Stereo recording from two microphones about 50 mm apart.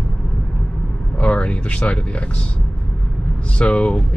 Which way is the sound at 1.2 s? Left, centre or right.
Left.